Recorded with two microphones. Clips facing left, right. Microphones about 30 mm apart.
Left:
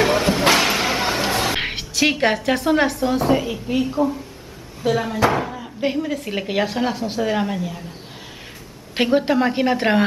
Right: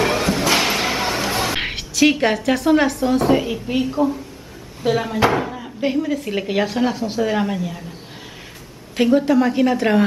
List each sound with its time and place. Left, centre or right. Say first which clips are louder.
0.0 s a sound: left 2 dB; centre
1.3 s a woman's voice: even; centre
8.9 s a woman's voice: right 2 dB; left